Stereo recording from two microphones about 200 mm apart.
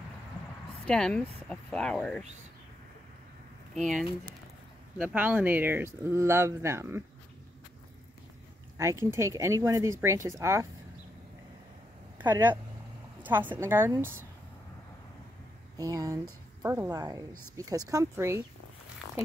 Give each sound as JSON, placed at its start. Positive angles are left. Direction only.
{"t": 0.8, "sound": "speech", "side_deg": 5}
{"t": 4.9, "sound": "speech", "side_deg": -5}
{"t": 8.7, "sound": "speech", "side_deg": -15}
{"t": 12.2, "sound": "speech", "side_deg": -10}
{"t": 15.8, "sound": "speech", "side_deg": -15}